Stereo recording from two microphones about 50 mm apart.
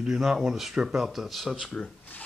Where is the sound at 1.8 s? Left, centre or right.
Centre.